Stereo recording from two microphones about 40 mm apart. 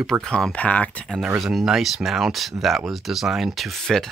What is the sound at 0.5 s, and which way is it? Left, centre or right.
Speech, left.